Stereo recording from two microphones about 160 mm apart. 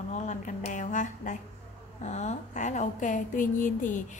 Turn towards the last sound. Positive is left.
turn(degrees=55)  # may be behind; listen again after turning